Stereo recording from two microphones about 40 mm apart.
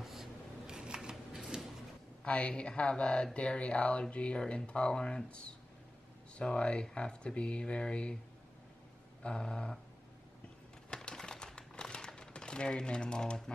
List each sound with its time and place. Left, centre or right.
0.0 s scissors: centre
0.7 s a sound: centre
2.2 s speech: left
9.2 s speech: centre
10.9 s typewriter: centre